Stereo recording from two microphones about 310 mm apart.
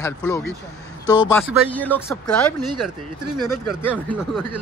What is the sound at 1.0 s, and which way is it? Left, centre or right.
Speech, centre.